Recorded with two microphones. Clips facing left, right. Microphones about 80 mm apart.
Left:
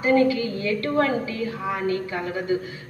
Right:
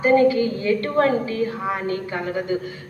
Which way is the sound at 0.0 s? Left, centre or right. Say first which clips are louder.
Right 3 dB; right.